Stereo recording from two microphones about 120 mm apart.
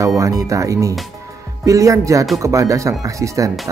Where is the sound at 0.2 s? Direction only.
25° right (ahead or behind).